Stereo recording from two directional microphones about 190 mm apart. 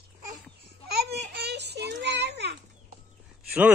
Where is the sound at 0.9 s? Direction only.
60° right (ahead or behind).